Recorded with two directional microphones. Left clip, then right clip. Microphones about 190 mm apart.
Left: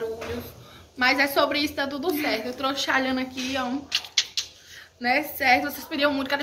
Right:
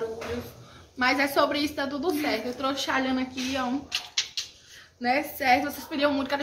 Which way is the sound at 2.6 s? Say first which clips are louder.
Left 4 dB; 20° right (ahead or behind).